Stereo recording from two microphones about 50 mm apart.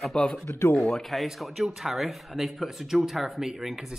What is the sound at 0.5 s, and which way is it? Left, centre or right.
Speech, left.